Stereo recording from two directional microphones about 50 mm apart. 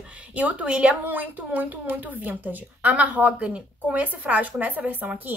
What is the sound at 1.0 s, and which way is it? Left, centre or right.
A woman's voice, right.